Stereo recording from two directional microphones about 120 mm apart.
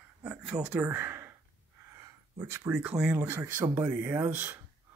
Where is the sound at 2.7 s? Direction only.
10° right (ahead or behind).